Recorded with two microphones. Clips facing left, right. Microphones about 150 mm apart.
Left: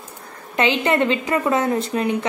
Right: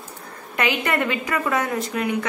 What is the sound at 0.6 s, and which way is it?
Speech, 25° left (ahead or behind).